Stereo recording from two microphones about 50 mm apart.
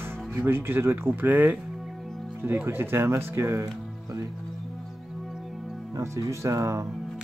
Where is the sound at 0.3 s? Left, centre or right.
Right.